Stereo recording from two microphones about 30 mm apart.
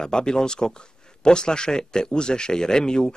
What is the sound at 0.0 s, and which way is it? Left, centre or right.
Speech, left.